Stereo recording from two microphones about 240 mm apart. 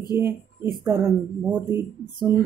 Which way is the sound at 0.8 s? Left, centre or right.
Centre.